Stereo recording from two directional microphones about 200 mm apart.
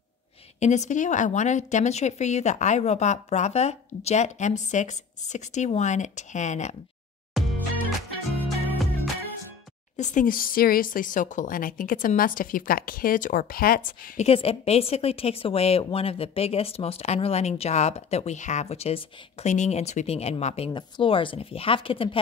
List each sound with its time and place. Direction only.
0.6 s speech: 35° left (ahead or behind)
7.3 s music: centre (ahead or behind)
8.6 s music: centre (ahead or behind)
9.9 s speech: 40° left (ahead or behind)